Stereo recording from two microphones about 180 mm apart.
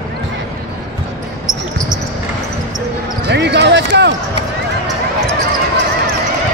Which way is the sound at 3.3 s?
70° right (ahead or behind).